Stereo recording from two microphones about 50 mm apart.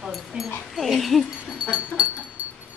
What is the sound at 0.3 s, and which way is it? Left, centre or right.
Speech, centre.